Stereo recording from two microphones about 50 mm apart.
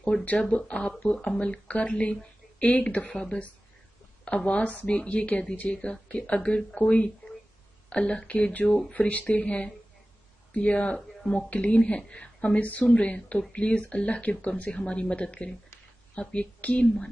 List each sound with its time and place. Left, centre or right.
0.4 s speech: left
9.4 s speech: centre